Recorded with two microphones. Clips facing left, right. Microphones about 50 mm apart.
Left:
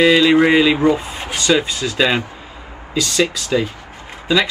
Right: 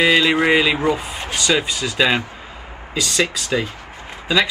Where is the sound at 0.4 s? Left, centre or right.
Centre.